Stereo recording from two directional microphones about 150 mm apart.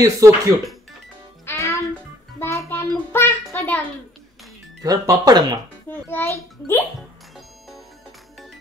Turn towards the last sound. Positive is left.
turn(degrees=15)  # may be behind; listen again after turning